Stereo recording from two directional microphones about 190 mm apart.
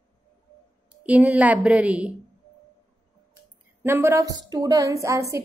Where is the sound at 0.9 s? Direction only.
5° right (ahead or behind).